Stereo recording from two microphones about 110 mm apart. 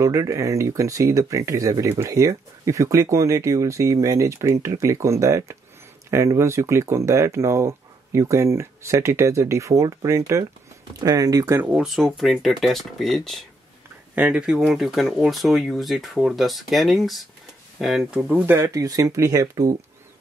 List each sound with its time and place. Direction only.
0.0 s speech: 30° right (ahead or behind)
11.5 s speech: 15° right (ahead or behind)
11.9 s speech: centre (ahead or behind)
14.1 s speech: 10° right (ahead or behind)
18.3 s speech: 20° right (ahead or behind)